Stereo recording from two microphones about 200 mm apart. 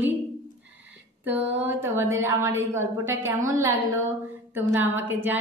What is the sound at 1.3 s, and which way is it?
A woman's voice, 10° right (ahead or behind).